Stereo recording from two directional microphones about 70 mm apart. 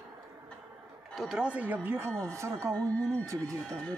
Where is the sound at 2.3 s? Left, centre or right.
Right.